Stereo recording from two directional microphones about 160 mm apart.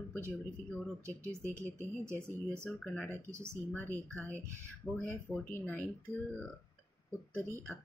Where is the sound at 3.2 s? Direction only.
15° right (ahead or behind).